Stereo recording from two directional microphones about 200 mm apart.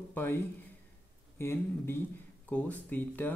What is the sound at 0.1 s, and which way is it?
Speech, 10° left (ahead or behind).